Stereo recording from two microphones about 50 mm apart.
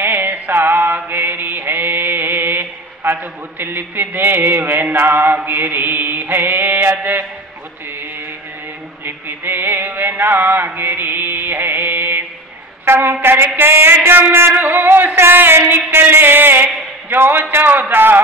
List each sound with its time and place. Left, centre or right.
0.0 s mantra: right
9.0 s music: right
12.8 s a woman's voice: right
13.1 s a sound: right